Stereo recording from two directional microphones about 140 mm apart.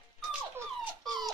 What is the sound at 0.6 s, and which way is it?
Dog, 30° right (ahead or behind).